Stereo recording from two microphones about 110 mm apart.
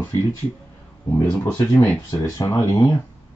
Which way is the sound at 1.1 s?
25° left (ahead or behind).